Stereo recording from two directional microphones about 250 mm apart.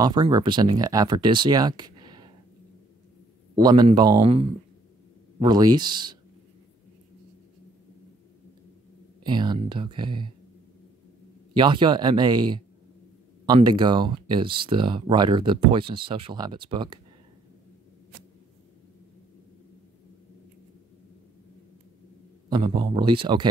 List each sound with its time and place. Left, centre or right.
0.0 s speech: centre
3.5 s speech: centre
9.2 s speech: centre
11.5 s speech: centre
22.5 s speech: centre